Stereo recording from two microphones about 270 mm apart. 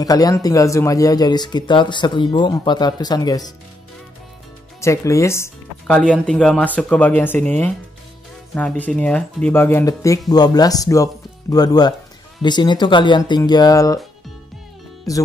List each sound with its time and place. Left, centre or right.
0.0 s speech: centre
4.7 s speech: centre
15.1 s speech: centre